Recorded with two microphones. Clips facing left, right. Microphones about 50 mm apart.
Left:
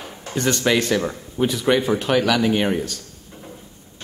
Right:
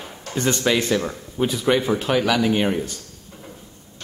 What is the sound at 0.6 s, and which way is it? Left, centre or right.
Speech, centre.